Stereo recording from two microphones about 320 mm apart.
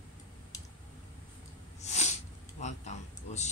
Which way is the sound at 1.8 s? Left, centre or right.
Left.